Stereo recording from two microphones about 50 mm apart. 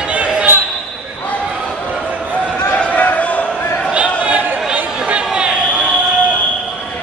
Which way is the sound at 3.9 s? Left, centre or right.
Right.